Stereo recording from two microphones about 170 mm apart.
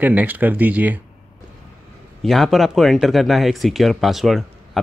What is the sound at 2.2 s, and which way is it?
Speech, centre (ahead or behind).